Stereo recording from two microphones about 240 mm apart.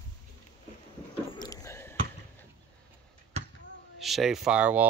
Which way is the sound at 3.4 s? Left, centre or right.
Right.